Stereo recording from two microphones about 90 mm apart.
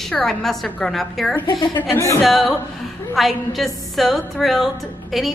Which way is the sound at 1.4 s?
60° left (ahead or behind).